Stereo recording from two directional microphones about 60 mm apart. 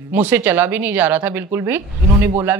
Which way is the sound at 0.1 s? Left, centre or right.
Right.